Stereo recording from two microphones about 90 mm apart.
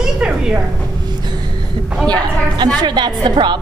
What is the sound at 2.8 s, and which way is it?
Music, 55° right (ahead or behind).